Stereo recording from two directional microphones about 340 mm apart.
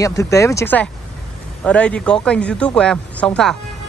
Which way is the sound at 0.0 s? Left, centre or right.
Centre.